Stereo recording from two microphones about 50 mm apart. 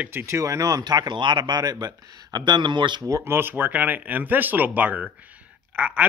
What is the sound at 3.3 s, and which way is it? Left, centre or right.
Speech, right.